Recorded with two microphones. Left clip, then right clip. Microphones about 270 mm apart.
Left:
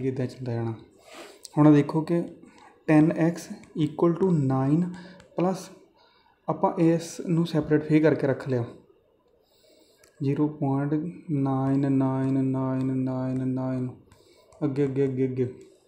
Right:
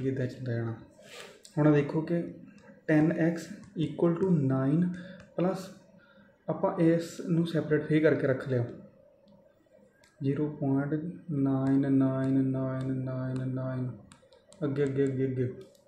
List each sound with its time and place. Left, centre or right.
0.0 s speech: left
4.3 s mantra: left
5.3 s speech: left
6.4 s mantra: left
10.2 s mantra: left